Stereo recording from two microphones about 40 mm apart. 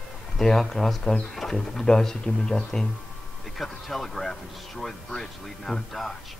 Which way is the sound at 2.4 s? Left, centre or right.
Left.